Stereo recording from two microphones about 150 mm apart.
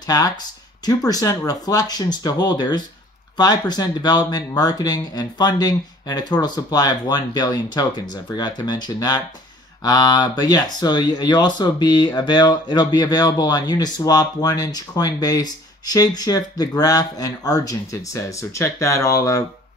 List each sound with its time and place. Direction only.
0.0 s speech: 25° left (ahead or behind)